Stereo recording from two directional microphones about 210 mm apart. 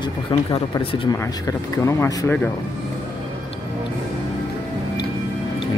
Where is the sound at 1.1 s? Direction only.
15° left (ahead or behind).